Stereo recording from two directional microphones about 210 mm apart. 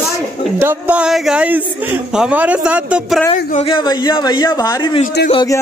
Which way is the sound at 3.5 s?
25° left (ahead or behind).